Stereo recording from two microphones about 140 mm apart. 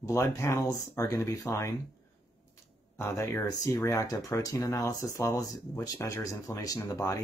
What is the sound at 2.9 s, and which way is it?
Speech, 20° left (ahead or behind).